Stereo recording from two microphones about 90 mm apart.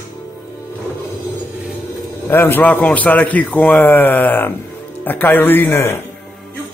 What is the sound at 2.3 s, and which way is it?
A man's voice, 25° left (ahead or behind).